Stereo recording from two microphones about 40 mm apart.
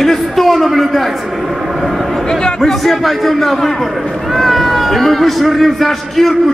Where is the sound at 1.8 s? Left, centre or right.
Centre.